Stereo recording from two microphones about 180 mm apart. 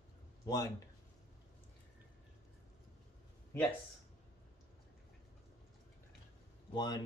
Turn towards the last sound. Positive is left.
turn(degrees=25)  # may be behind; listen again after turning